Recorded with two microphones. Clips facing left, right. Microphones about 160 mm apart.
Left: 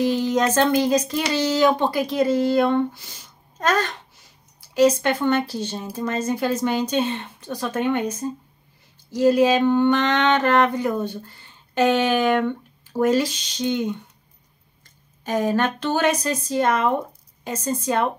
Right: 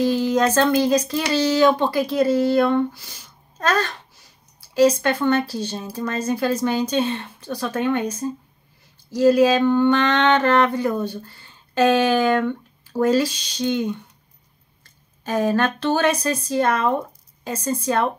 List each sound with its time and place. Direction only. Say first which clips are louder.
0.0 s speech: right 1 dB; 20° left (ahead or behind)
9.1 s a sound: right 1 dB; 20° left (ahead or behind)
12.9 s speech: right 1 dB; 20° left (ahead or behind)
15.2 s speech: right 1 dB; 20° left (ahead or behind)